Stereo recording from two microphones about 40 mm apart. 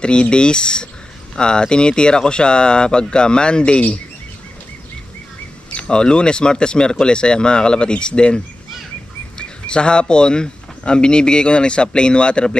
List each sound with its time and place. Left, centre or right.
0.0 s speech: left
5.8 s speech: left
9.4 s speech: left